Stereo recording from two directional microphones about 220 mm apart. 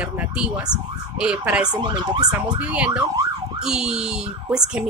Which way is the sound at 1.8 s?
20° right (ahead or behind).